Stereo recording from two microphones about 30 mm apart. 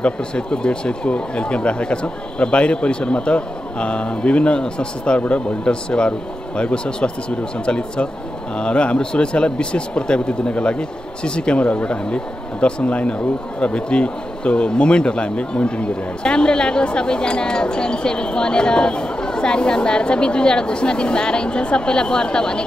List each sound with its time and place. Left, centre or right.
0.0 s speech: left
11.5 s speech: left